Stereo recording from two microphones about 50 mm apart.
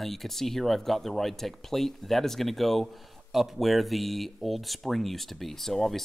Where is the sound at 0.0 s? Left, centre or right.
Centre.